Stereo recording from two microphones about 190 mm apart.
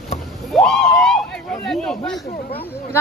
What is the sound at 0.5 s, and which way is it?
Speech, centre (ahead or behind).